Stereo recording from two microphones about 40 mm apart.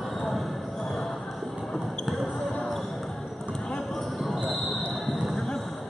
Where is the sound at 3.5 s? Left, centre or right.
Centre.